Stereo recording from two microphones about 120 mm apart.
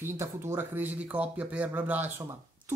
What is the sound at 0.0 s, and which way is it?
Speech, 20° right (ahead or behind).